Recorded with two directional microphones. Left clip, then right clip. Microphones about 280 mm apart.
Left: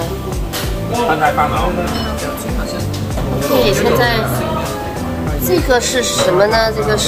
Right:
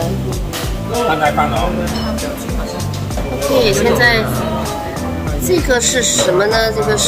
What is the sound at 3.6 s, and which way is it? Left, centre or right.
Speech, centre.